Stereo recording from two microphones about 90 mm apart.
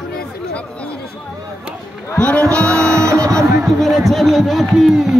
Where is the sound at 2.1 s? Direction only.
15° left (ahead or behind).